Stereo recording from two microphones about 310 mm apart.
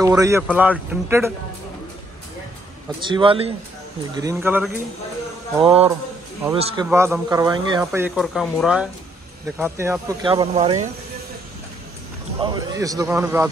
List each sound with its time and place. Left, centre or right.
0.0 s speech: centre
3.0 s speech: centre
12.4 s speech: centre